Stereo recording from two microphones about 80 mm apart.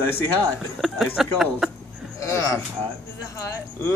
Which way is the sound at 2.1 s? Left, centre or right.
Left.